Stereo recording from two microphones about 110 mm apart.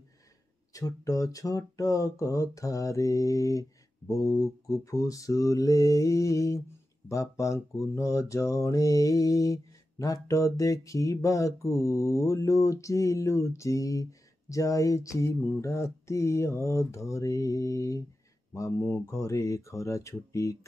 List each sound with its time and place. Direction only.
0.7 s speech: 30° left (ahead or behind)
4.1 s mantra: 30° left (ahead or behind)